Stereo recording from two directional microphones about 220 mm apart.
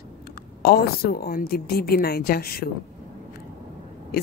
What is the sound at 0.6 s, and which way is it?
A woman's voice, 45° left (ahead or behind).